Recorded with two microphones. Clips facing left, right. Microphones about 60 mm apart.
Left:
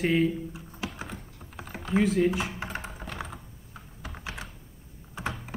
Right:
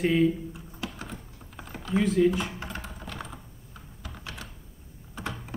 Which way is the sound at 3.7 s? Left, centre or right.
Left.